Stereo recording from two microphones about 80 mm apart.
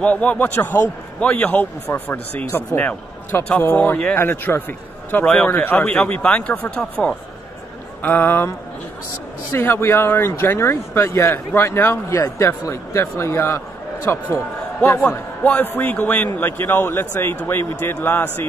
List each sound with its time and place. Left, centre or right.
0.0 s a man's voice: centre
1.9 s a man's voice: left; by 7.2 s centre
8.0 s a man's voice: left
9.5 s a man's voice: left
15.4 s a man's voice: left